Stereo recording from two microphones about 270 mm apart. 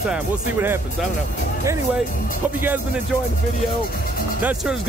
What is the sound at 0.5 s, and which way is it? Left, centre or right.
Speech, centre.